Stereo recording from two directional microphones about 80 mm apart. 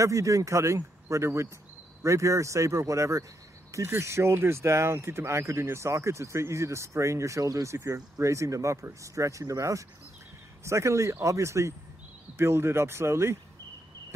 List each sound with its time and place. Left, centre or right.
0.0 s speech: right